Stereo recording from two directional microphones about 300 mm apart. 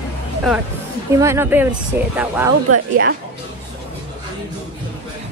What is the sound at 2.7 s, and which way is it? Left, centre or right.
Speech, right.